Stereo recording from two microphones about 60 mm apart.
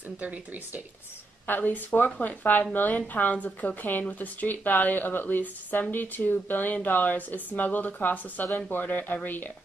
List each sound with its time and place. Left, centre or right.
0.2 s speech: right
1.5 s speech: left